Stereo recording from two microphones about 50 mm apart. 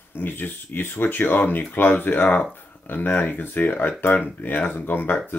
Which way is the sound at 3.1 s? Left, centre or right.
Left.